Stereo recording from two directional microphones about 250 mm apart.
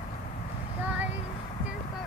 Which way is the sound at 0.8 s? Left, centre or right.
Centre.